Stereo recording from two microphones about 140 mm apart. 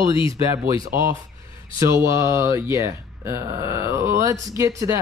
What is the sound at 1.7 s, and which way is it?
Speech, 20° right (ahead or behind).